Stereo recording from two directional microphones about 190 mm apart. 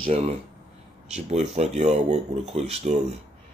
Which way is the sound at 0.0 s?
35° right (ahead or behind).